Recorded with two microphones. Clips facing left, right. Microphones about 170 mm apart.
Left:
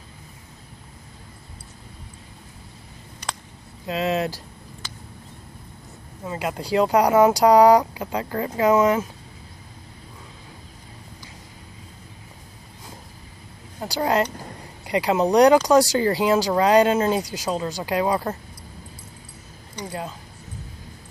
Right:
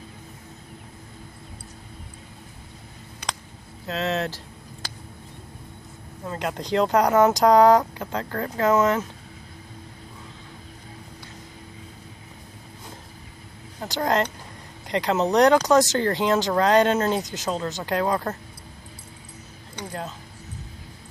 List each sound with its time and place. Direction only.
3.8 s speech: 10° left (ahead or behind)
6.2 s speech: 5° left (ahead or behind)
13.7 s speech: 10° left (ahead or behind)
19.8 s speech: 10° left (ahead or behind)